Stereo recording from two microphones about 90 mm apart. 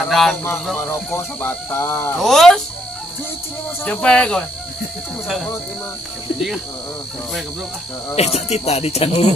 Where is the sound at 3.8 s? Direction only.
10° left (ahead or behind).